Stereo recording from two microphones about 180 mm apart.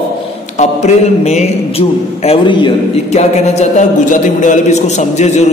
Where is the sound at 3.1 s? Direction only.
40° left (ahead or behind).